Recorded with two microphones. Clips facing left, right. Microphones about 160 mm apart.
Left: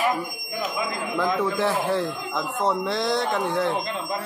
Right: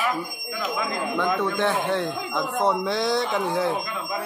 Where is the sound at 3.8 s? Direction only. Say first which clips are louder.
Left 1 dB; 30° left (ahead or behind).